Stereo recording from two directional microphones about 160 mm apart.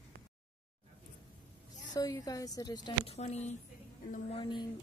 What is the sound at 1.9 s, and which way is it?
A woman's voice, 25° left (ahead or behind).